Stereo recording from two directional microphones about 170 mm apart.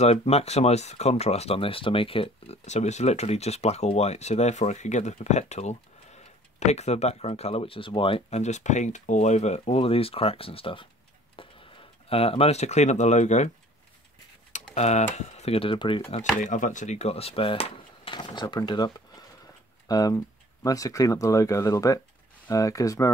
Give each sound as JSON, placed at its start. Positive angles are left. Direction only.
{"t": 0.0, "sound": "speech", "side_deg": 35}
{"t": 11.4, "sound": "a sound", "side_deg": 30}
{"t": 12.1, "sound": "speech", "side_deg": 35}
{"t": 14.5, "sound": "speech", "side_deg": 40}
{"t": 16.1, "sound": "speech", "side_deg": 45}